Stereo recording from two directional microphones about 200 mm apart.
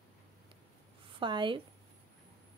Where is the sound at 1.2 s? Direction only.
25° right (ahead or behind).